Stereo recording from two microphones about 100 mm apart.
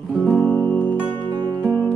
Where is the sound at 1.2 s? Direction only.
50° right (ahead or behind).